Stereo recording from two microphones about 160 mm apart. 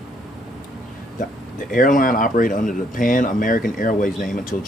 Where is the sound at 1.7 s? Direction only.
60° left (ahead or behind).